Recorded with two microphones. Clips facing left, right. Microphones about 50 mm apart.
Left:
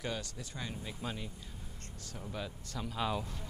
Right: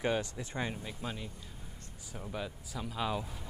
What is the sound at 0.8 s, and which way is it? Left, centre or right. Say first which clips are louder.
Speech: even; centre.